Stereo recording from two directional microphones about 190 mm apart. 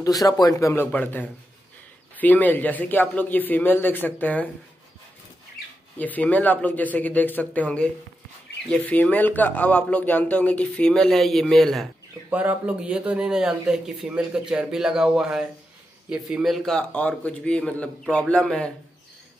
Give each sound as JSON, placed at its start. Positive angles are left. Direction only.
{"t": 0.0, "sound": "a man's voice", "side_deg": 20}
{"t": 5.9, "sound": "a man's voice", "side_deg": 10}